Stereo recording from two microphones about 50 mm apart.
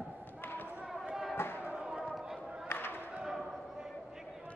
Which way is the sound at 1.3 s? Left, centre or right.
Left.